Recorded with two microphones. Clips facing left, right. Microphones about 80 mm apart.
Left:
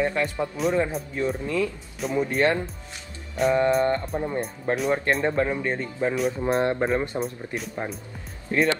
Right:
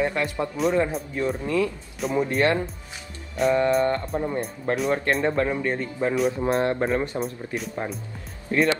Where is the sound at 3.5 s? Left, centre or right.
Centre.